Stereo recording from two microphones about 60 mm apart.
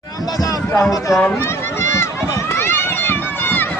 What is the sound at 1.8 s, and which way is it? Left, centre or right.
Run, left.